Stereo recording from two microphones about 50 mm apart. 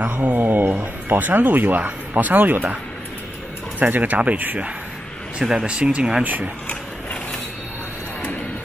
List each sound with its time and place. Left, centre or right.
0.1 s speech: right
3.8 s speech: right
5.4 s speech: centre
6.2 s speech: right